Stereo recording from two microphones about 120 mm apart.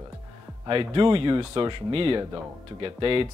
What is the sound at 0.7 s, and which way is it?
Speech, 45° right (ahead or behind).